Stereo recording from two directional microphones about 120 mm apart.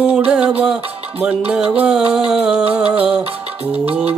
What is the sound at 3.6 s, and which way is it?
Music, 55° right (ahead or behind).